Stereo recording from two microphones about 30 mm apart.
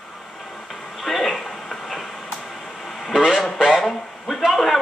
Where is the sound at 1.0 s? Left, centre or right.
Centre.